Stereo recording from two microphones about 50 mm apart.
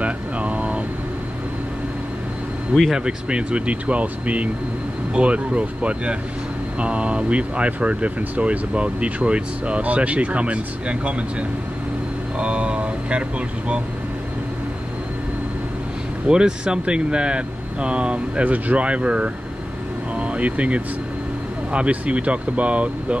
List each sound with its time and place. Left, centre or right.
0.0 s air conditioning: right
2.9 s speech: centre
12.4 s speech: right
16.3 s speech: centre